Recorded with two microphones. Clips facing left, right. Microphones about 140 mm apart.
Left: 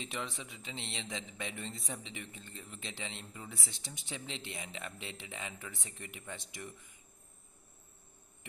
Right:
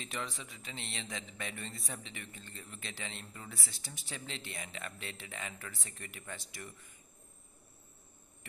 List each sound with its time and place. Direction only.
0.0 s speech: 20° left (ahead or behind)